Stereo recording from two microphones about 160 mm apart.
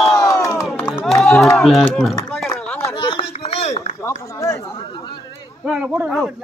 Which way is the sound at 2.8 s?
30° left (ahead or behind).